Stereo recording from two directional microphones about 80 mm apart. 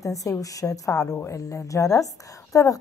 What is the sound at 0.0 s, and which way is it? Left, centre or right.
A woman's voice, left.